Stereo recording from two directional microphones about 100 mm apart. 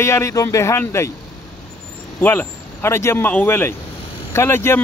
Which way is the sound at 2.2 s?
20° left (ahead or behind).